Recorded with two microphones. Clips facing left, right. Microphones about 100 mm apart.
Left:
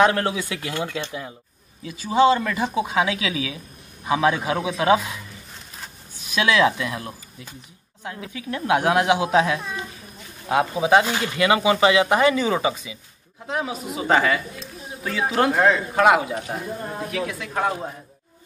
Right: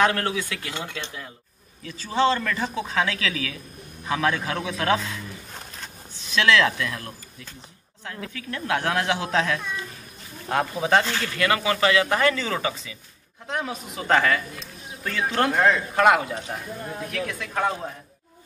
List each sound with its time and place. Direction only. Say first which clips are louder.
0.0 s speech: left 3 dB; 20° left (ahead or behind)
5.8 s zipper: even; 10° left (ahead or behind)
8.0 s speech: left 2 dB; 15° left (ahead or behind)
9.6 s speech: left 1 dB; 35° left (ahead or behind)
10.5 s speech: left 4 dB; 10° left (ahead or behind)
13.5 s a man's voice: left 3 dB; centre (ahead or behind)